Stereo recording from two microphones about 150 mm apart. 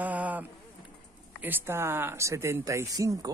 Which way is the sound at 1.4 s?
15° right (ahead or behind).